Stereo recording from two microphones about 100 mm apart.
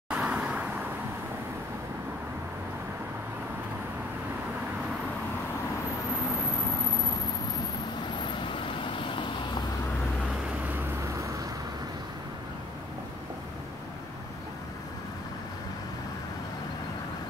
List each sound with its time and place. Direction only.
0.1 s vehicle: 15° right (ahead or behind)
8.2 s vehicle: 55° left (ahead or behind)
11.1 s vehicle: 30° right (ahead or behind)